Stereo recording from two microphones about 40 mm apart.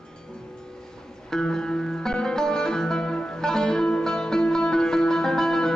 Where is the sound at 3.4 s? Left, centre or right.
Centre.